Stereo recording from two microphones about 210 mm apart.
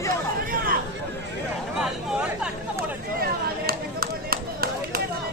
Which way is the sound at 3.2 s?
45° right (ahead or behind).